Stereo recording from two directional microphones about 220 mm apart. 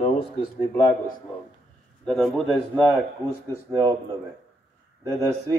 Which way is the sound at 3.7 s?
20° right (ahead or behind).